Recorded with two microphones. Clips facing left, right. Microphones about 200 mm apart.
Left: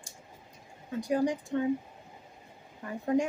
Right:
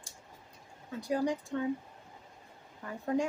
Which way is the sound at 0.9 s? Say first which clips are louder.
Left 3 dB; 15° left (ahead or behind).